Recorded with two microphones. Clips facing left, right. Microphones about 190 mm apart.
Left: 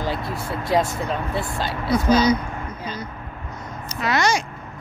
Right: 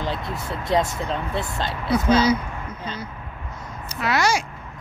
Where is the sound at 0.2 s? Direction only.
25° right (ahead or behind).